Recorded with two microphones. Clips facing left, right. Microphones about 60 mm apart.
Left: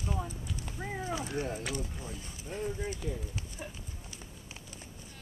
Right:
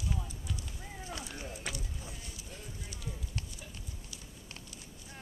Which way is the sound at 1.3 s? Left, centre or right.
Left.